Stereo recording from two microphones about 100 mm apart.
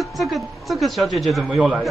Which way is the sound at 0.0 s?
Centre (ahead or behind).